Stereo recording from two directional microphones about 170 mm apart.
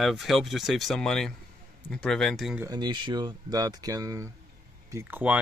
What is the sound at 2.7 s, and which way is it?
Speech, 25° right (ahead or behind).